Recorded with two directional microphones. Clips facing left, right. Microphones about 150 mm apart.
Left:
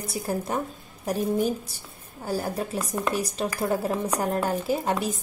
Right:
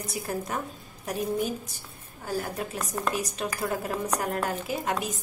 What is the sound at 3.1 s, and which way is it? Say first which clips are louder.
A woman's voice: left 3 dB; 30° left (ahead or behind).